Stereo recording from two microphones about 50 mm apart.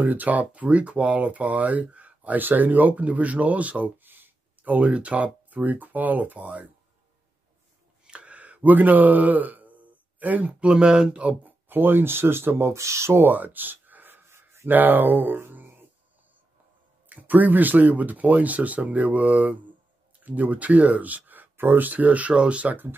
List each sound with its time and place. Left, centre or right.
0.0 s speech: right
4.0 s speech: right
8.0 s a sound: right
10.6 s speech: centre
11.4 s speech: right
13.2 s a sound: right
14.7 s speech: right
17.1 s speech: right